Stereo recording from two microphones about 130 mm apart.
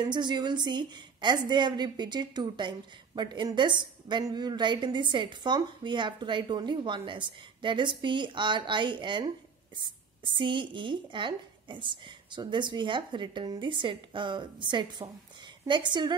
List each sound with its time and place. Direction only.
0.1 s a woman's voice: 35° right (ahead or behind)